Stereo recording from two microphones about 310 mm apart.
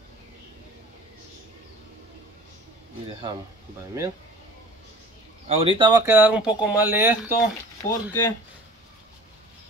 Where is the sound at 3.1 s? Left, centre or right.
Centre.